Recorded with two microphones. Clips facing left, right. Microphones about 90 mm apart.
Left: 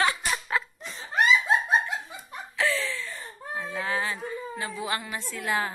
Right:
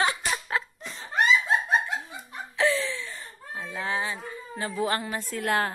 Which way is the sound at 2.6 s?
20° right (ahead or behind).